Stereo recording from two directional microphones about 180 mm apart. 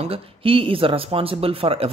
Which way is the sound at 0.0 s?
30° right (ahead or behind).